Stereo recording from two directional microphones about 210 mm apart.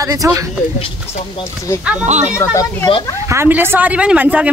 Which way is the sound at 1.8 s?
5° right (ahead or behind).